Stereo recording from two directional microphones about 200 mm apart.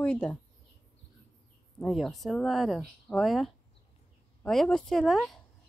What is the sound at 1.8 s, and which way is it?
Speech, centre (ahead or behind).